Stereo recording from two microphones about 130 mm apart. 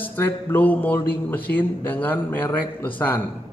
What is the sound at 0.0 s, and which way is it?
A man's voice, 15° left (ahead or behind).